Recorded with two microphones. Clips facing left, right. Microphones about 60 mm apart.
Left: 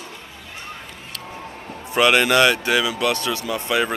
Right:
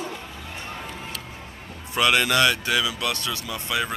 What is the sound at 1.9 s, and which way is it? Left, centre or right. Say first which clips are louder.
Speech: left 5 dB; left.